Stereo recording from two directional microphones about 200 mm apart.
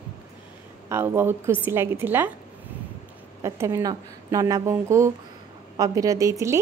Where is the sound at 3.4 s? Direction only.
15° right (ahead or behind).